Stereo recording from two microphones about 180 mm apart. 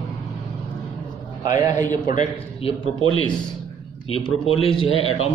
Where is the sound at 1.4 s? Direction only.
20° right (ahead or behind).